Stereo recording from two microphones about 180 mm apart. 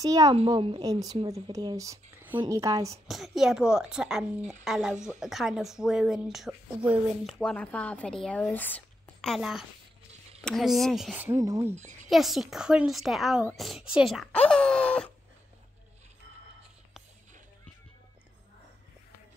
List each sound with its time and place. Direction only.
0.0 s a woman's voice: 20° right (ahead or behind)
3.1 s a woman's voice: centre (ahead or behind)
11.1 s a woman's voice: 15° right (ahead or behind)
11.7 s a woman's voice: 40° right (ahead or behind)
12.1 s a woman's voice: centre (ahead or behind)